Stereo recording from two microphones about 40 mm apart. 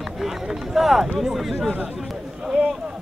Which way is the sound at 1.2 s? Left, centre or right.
Centre.